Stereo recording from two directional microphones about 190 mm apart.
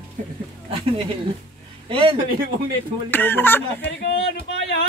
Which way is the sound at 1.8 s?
25° right (ahead or behind).